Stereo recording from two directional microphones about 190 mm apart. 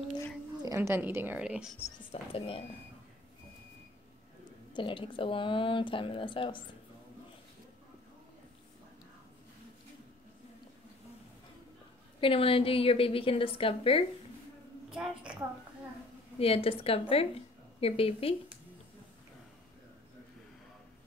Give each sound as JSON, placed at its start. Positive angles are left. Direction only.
{"t": 0.6, "sound": "a woman's voice", "side_deg": -15}
{"t": 2.3, "sound": "speech", "side_deg": 30}
{"t": 4.7, "sound": "speech", "side_deg": 25}
{"t": 12.2, "sound": "speech", "side_deg": 30}
{"t": 14.9, "sound": "a woman's voice", "side_deg": -5}
{"t": 16.3, "sound": "a woman's voice", "side_deg": 30}